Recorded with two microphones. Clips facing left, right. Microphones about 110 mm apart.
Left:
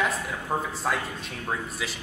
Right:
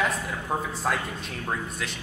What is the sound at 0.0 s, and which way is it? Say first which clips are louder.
A man's voice: even; centre (ahead or behind).